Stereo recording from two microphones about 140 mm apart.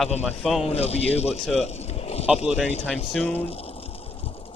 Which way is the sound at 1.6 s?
50° left (ahead or behind).